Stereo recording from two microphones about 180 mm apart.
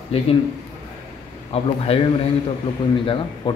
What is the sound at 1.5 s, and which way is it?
A man's voice, 35° left (ahead or behind).